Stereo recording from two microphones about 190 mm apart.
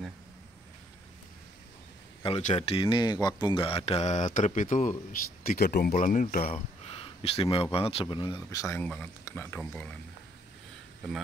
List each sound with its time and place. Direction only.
2.2 s speech: 35° left (ahead or behind)
6.9 s a sound: 30° left (ahead or behind)
7.7 s speech: 30° left (ahead or behind); by 9.9 s 10° left (ahead or behind)